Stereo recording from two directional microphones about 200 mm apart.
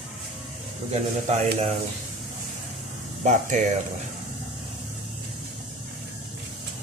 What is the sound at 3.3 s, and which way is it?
Speech, 35° right (ahead or behind).